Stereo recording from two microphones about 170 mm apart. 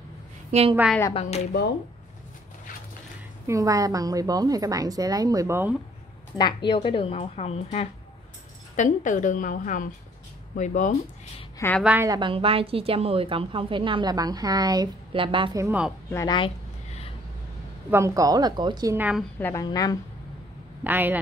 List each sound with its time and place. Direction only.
0.5 s a woman's voice: 40° right (ahead or behind)
3.4 s a woman's voice: 20° right (ahead or behind)
6.3 s a woman's voice: 25° left (ahead or behind); by 11.0 s 45° left (ahead or behind)
11.5 s a sound: 15° left (ahead or behind)
11.8 s speech: 10° right (ahead or behind)
12.1 s a woman's voice: 30° right (ahead or behind)
15.6 s speech: 10° right (ahead or behind)
16.1 s speech: 15° left (ahead or behind)
16.3 s a sound: 35° left (ahead or behind)
17.8 s a woman's voice: 15° right (ahead or behind)
18.9 s speech: 10° right (ahead or behind)
19.4 s a woman's voice: 20° left (ahead or behind)
20.8 s speech: 10° right (ahead or behind)